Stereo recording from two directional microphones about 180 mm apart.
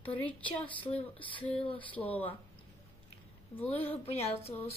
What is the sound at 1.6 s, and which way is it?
Speech, 30° left (ahead or behind).